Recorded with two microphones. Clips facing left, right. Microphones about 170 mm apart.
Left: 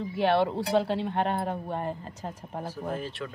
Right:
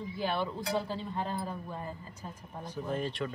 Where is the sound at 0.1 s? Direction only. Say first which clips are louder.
Left 9 dB; 70° left (ahead or behind).